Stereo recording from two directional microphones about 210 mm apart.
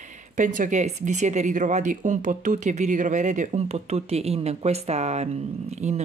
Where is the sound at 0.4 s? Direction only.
40° right (ahead or behind).